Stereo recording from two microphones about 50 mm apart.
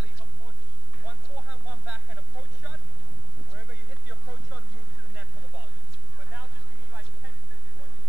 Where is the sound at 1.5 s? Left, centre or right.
Right.